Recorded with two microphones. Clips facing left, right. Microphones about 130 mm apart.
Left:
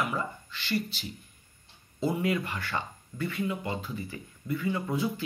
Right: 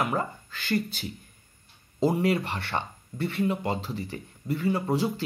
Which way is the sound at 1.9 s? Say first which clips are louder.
Right 4 dB; 35° right (ahead or behind).